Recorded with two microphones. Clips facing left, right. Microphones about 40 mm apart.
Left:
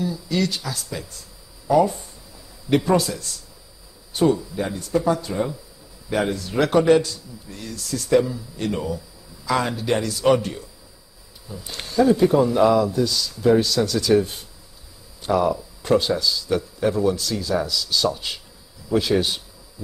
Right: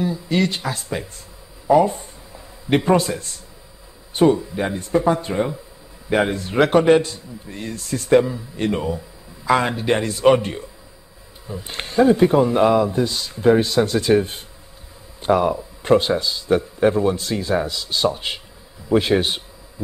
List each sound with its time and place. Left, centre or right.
0.0 s a man's voice: right